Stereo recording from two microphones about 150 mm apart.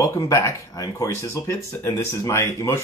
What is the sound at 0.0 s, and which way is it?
Speech, 20° left (ahead or behind).